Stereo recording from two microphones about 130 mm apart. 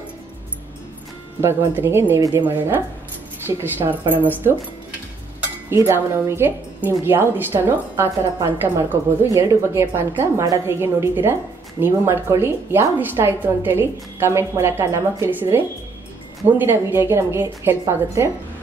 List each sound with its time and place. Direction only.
1.7 s speech: 15° right (ahead or behind)
5.4 s a woman's voice: 15° right (ahead or behind)